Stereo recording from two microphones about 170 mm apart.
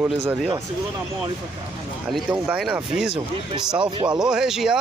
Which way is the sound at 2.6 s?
5° right (ahead or behind).